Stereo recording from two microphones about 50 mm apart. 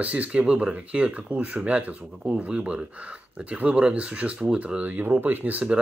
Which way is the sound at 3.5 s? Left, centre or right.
Right.